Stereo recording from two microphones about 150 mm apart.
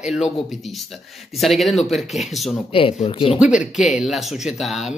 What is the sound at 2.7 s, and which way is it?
Speech, 35° left (ahead or behind).